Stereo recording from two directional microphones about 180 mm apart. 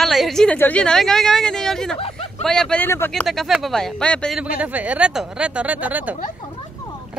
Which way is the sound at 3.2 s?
Centre (ahead or behind).